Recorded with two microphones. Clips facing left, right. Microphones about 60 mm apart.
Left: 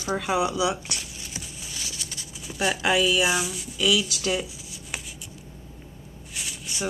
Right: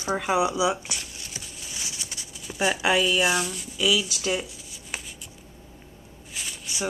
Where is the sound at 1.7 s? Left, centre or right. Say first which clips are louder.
Right 1 dB; centre.